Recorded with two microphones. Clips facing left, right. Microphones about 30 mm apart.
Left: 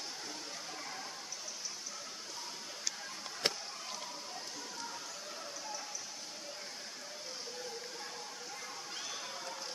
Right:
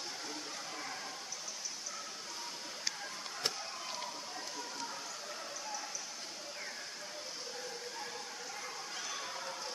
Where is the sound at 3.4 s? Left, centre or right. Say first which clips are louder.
Left 3 dB; left.